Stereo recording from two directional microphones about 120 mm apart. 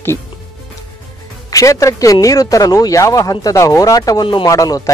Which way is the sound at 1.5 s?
25° left (ahead or behind).